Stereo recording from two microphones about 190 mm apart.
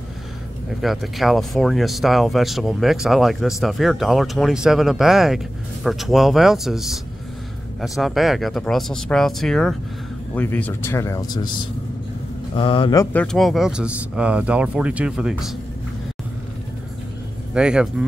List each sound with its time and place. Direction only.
0.7 s speech: centre (ahead or behind); by 11.5 s 20° left (ahead or behind)
12.5 s speech: 25° left (ahead or behind)
13.0 s speech: 5° left (ahead or behind)
17.6 s speech: 5° right (ahead or behind)